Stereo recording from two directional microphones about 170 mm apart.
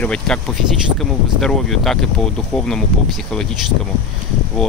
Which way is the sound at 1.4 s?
Centre (ahead or behind).